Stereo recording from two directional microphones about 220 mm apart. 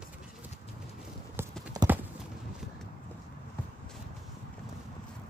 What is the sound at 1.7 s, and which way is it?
Clip-clop, 15° right (ahead or behind).